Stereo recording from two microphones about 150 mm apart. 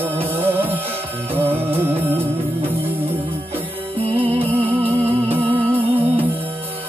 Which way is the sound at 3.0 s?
40° right (ahead or behind).